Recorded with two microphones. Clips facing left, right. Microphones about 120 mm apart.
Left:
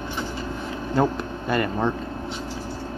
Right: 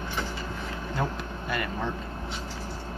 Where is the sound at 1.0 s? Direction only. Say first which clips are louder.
Left 10 dB; 35° left (ahead or behind).